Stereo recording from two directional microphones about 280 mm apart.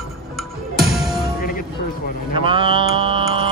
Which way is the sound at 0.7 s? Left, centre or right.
Centre.